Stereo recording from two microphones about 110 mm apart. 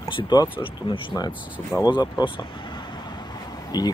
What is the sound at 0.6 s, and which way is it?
Speech, 50° left (ahead or behind).